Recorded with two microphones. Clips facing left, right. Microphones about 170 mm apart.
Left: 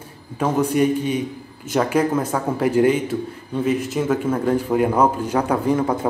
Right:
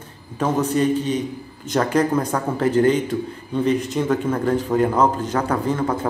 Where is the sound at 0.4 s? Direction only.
10° left (ahead or behind).